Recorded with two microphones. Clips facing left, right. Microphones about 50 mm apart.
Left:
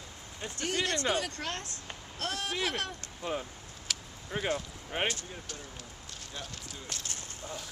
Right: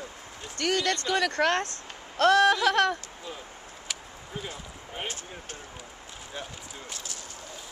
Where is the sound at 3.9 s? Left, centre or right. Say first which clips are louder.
Even; centre.